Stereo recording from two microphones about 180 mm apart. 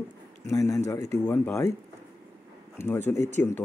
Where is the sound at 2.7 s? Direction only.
10° left (ahead or behind).